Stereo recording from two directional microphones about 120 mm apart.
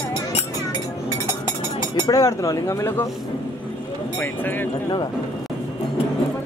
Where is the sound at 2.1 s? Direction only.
30° left (ahead or behind).